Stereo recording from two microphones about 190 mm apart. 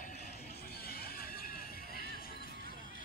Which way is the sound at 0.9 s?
55° left (ahead or behind).